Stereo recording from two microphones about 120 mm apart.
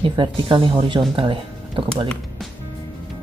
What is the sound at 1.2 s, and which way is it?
Music, 45° right (ahead or behind).